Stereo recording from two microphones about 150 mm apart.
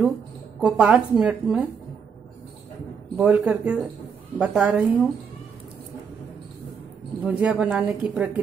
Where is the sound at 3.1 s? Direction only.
10° right (ahead or behind).